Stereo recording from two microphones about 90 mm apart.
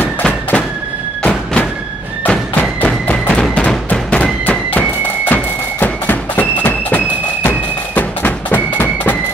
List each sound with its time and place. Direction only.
0.0 s a sound: 20° left (ahead or behind)
2.2 s thump: 10° left (ahead or behind)
3.1 s music: 15° left (ahead or behind)